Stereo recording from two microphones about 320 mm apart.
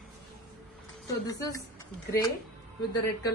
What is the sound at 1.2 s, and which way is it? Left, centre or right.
Speech, centre.